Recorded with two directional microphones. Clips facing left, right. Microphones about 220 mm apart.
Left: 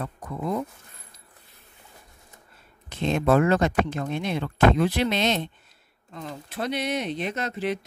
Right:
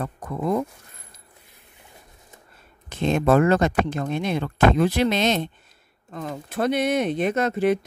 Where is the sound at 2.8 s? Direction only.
50° right (ahead or behind).